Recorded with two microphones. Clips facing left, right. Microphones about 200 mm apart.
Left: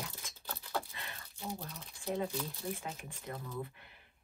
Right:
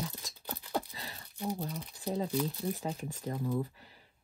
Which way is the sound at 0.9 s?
35° right (ahead or behind).